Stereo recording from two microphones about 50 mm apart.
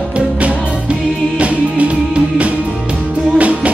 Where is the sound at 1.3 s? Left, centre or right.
Right.